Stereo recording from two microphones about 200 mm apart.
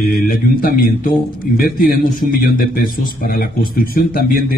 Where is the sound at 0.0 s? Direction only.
45° left (ahead or behind).